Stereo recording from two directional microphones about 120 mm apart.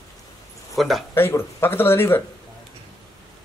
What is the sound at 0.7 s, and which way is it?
Speech, centre (ahead or behind).